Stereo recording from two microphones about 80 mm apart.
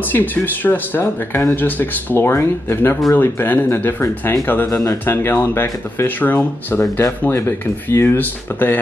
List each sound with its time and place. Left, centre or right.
0.1 s speech: left
4.6 s speech: left
5.0 s speech: left